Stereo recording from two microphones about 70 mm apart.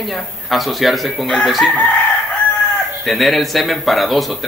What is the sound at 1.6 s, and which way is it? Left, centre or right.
Chicken, centre.